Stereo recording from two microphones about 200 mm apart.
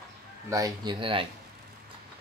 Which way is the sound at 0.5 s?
20° right (ahead or behind).